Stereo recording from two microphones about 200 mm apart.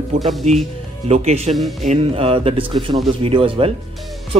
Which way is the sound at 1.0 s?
30° right (ahead or behind).